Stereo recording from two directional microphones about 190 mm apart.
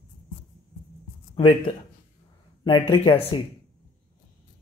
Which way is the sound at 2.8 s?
30° left (ahead or behind).